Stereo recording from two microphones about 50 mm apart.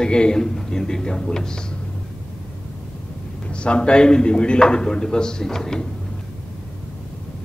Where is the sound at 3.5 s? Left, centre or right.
Left.